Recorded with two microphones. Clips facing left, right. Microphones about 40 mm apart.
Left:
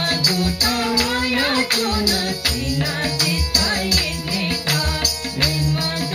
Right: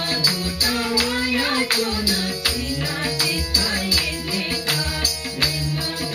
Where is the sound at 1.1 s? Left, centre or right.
Left.